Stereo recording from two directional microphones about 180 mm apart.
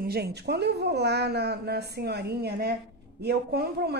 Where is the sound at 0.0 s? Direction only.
60° right (ahead or behind).